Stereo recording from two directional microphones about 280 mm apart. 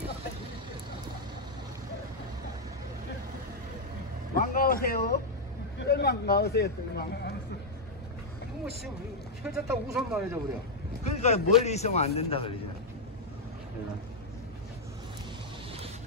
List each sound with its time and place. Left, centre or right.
4.4 s a sound: left
5.8 s speech: left
9.4 s speech: centre
11.1 s a man's voice: left